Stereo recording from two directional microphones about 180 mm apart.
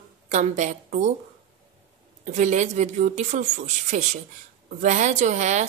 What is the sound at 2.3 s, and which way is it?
A woman's voice, 40° right (ahead or behind).